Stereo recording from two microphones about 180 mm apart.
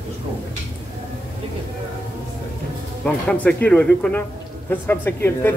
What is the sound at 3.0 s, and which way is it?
Speech, 5° left (ahead or behind).